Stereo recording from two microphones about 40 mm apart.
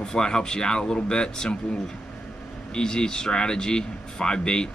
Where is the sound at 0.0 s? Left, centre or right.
Centre.